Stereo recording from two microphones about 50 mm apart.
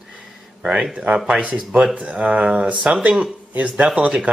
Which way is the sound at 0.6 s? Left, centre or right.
Centre.